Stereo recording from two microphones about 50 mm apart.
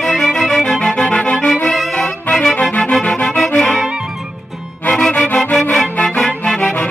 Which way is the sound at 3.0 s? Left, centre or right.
Left.